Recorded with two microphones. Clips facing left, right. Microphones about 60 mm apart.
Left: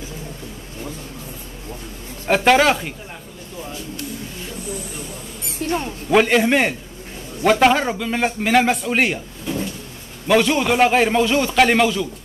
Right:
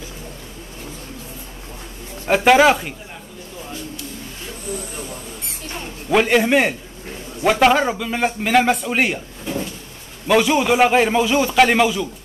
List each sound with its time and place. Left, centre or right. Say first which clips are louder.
2.2 s a man's voice: right 2 dB; centre
5.6 s mouse: left 13 dB; left
6.0 s a man's voice: even; centre
10.2 s a man's voice: right 1 dB; centre